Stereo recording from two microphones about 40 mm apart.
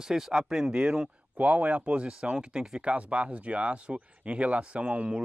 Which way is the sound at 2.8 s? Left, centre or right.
Right.